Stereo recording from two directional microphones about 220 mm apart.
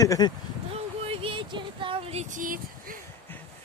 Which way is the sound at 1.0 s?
25° right (ahead or behind).